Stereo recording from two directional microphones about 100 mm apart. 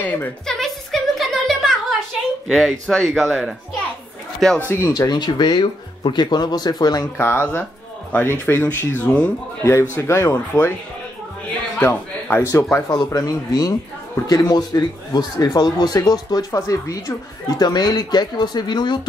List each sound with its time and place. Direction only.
0.0 s a woman's voice: 15° left (ahead or behind)
0.6 s a sound: centre (ahead or behind)
2.4 s speech: centre (ahead or behind)
4.6 s speech: 30° left (ahead or behind)
7.2 s speech: 20° left (ahead or behind)
9.7 s speech: 30° left (ahead or behind)
11.8 s speech: 20° left (ahead or behind); by 18.9 s 45° left (ahead or behind)